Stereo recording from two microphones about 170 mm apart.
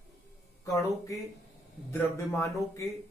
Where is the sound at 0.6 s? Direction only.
20° left (ahead or behind).